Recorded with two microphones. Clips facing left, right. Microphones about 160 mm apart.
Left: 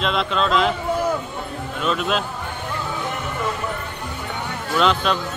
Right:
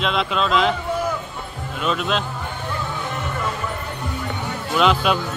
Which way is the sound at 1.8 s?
Centre (ahead or behind).